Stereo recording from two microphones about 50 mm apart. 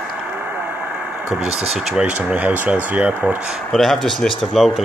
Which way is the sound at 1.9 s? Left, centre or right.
Centre.